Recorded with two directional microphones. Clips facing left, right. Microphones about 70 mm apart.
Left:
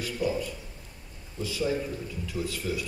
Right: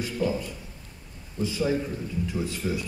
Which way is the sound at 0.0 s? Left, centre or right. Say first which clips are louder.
Right 2 dB; right.